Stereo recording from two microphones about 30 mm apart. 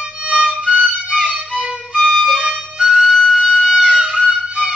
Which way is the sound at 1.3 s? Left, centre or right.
Right.